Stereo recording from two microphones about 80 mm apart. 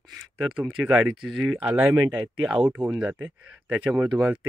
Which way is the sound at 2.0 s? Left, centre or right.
Right.